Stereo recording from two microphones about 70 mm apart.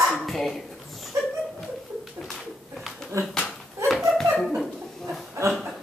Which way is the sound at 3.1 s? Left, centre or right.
Right.